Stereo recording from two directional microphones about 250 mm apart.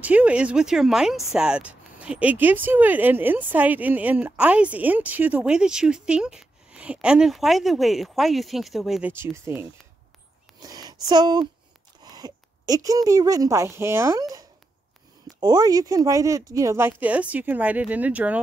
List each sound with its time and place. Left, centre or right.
0.0 s speech: centre
15.4 s speech: centre